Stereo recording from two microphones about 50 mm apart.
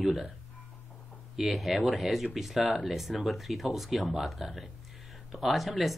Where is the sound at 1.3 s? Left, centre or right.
Centre.